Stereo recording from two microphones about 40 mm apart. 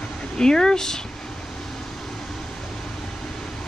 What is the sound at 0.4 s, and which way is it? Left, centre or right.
Speech, centre.